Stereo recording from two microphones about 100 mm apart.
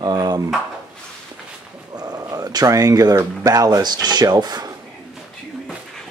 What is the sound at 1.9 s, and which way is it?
Speech, 40° right (ahead or behind).